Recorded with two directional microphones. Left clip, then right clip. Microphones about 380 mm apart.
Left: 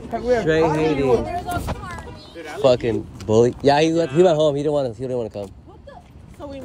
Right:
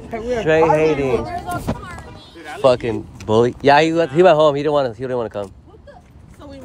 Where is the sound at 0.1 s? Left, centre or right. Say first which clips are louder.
Right 1 dB; centre.